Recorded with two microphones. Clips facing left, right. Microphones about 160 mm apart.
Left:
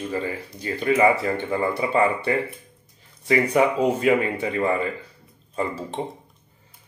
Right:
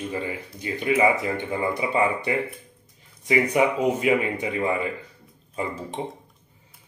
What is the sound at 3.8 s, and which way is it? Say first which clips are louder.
Speech: left 2 dB; 15° right (ahead or behind).